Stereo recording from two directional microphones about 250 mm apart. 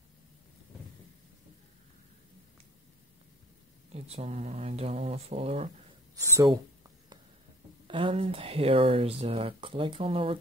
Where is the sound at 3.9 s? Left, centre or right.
Right.